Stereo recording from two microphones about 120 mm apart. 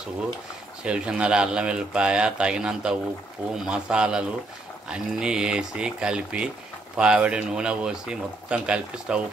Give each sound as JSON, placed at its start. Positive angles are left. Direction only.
{"t": 0.8, "sound": "speech", "side_deg": -10}